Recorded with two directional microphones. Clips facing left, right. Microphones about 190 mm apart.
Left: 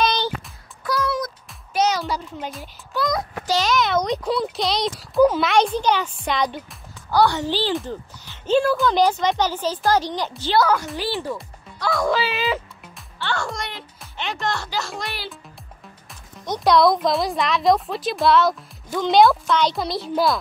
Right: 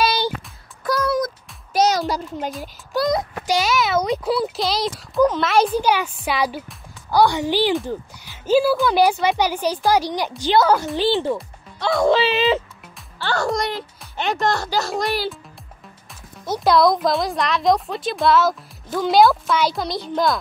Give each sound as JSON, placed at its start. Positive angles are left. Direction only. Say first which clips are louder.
{"t": 0.0, "sound": "music", "louder": "right 1 dB", "side_deg": -10}
{"t": 0.8, "sound": "music", "louder": "right 3 dB", "side_deg": -45}
{"t": 2.6, "sound": "a child's voice", "louder": "right 3 dB", "side_deg": -35}
{"t": 3.4, "sound": "a child's voice", "louder": "even", "side_deg": -10}
{"t": 5.5, "sound": "speech", "louder": "right 1 dB", "side_deg": -5}
{"t": 13.2, "sound": "speech", "louder": "right 6 dB", "side_deg": -35}
{"t": 16.1, "sound": "speech", "louder": "right 2 dB", "side_deg": -5}